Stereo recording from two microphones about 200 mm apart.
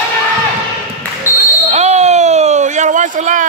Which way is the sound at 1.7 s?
35° right (ahead or behind).